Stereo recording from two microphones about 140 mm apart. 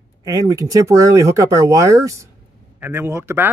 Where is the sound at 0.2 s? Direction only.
25° right (ahead or behind).